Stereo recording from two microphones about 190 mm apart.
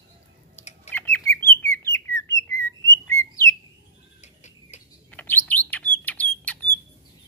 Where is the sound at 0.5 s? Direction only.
35° left (ahead or behind).